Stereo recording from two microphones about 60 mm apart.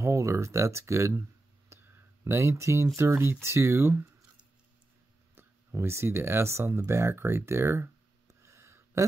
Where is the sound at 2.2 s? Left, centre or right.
Right.